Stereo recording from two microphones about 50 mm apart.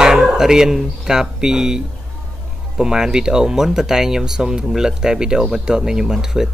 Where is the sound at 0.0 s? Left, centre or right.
Centre.